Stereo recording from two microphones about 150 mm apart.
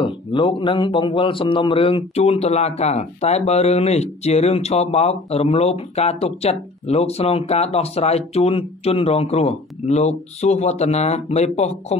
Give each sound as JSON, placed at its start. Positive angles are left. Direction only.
{"t": 0.0, "sound": "a man's voice", "side_deg": 35}